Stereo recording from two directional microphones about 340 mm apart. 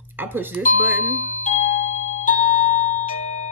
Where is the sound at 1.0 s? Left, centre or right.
Left.